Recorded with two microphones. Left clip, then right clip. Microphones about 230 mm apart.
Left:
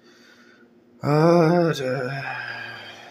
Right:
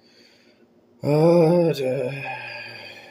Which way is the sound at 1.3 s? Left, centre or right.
Centre.